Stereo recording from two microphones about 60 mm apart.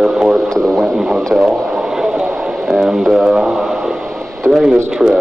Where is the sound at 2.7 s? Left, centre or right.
Centre.